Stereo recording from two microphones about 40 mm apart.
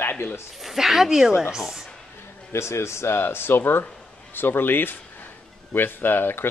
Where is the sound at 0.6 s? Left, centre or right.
Centre.